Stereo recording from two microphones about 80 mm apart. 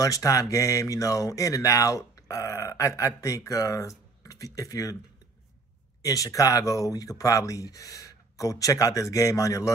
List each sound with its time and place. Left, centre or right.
0.0 s speech: left
6.0 s speech: left